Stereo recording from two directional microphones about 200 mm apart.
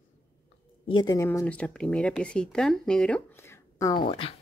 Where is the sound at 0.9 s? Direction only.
20° left (ahead or behind).